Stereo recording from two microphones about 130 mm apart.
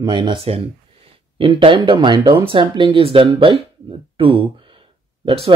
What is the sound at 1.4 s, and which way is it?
Speech, 40° right (ahead or behind).